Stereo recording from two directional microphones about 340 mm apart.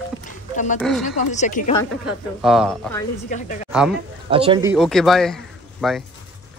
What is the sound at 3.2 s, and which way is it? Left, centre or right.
Speech, left.